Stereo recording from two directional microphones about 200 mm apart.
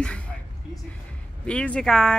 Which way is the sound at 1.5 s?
5° left (ahead or behind).